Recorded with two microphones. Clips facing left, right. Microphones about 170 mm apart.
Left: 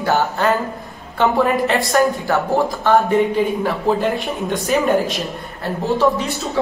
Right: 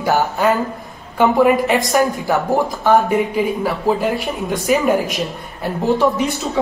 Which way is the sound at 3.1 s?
5° right (ahead or behind).